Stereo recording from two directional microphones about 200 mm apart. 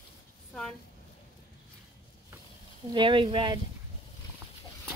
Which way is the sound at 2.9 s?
25° right (ahead or behind).